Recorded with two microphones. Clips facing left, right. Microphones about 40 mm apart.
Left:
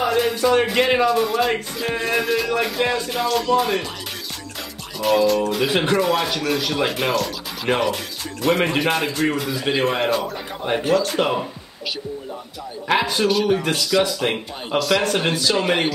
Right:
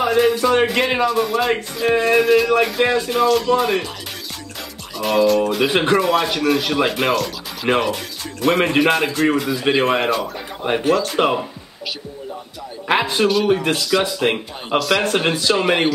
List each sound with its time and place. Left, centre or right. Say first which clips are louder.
0.0 s a man's voice: right 3 dB; centre
4.9 s a man's voice: right 2 dB; centre
12.8 s speech: right 2 dB; centre
14.0 s speech: right 3 dB; centre
14.8 s a man's voice: right 1 dB; centre